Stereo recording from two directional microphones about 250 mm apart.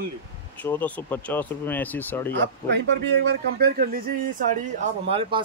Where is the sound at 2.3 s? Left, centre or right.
Right.